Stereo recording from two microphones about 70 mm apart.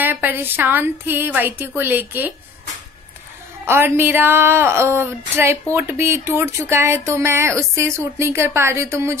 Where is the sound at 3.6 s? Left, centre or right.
Right.